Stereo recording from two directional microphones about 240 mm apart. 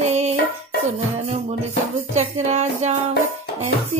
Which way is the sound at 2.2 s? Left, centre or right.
Right.